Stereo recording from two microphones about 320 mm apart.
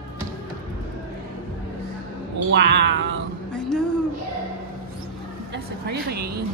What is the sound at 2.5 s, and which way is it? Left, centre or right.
Cat, right.